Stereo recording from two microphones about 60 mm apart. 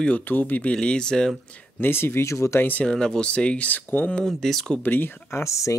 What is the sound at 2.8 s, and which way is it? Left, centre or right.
Speech, centre.